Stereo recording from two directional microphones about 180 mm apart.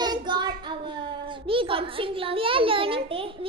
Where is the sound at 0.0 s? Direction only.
25° right (ahead or behind).